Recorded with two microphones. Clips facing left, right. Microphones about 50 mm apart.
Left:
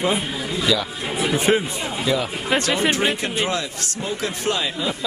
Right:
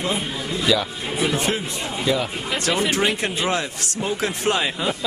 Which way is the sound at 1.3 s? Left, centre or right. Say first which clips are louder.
Left 9 dB; centre.